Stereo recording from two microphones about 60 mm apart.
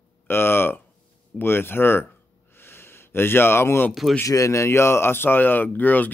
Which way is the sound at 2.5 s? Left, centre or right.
Left.